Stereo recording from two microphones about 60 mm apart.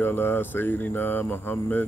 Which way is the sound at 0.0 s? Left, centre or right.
Left.